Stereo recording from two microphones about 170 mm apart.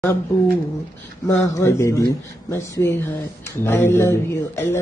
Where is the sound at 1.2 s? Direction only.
20° left (ahead or behind).